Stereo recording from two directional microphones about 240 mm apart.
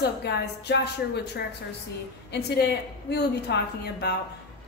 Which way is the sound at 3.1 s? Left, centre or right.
Left.